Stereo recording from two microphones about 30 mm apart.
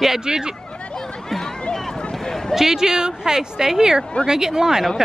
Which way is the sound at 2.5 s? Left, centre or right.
Centre.